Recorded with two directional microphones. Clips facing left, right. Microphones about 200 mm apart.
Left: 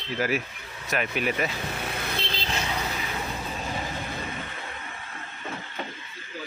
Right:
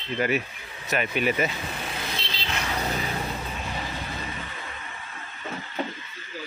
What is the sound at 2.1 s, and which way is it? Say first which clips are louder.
Vehicle: left 3 dB; 50° left (ahead or behind).